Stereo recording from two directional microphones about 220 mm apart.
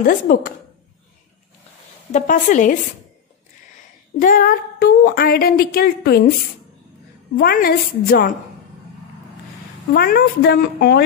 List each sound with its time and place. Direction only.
0.0 s a woman's voice: 40° left (ahead or behind)
2.1 s a woman's voice: 35° left (ahead or behind)
4.2 s speech: 40° left (ahead or behind)
7.3 s speech: 45° left (ahead or behind)
9.9 s speech: 45° left (ahead or behind)